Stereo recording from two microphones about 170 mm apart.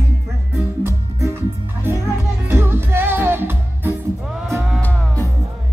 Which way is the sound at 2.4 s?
15° right (ahead or behind).